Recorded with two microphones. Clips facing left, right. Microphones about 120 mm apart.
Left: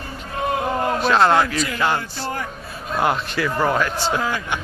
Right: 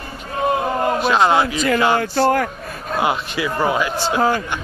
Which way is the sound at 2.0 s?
70° right (ahead or behind).